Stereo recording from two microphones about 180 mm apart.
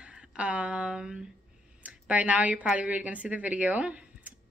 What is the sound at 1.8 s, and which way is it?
A woman's voice, 10° right (ahead or behind).